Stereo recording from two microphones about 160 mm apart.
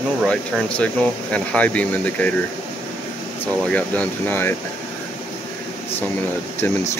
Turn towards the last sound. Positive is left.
turn(degrees=15)  # may be behind; listen again after turning